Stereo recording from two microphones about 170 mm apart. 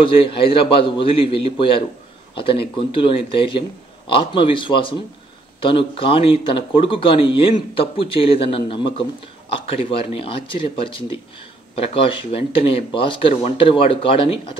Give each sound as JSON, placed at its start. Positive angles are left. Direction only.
{"t": 0.0, "sound": "a man's voice", "side_deg": 30}